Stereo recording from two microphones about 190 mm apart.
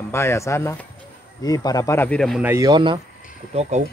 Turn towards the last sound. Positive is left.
turn(degrees=-35)  # may be behind; listen again after turning